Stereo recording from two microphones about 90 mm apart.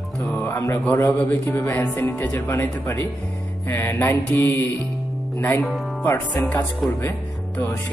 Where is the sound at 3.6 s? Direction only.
30° left (ahead or behind).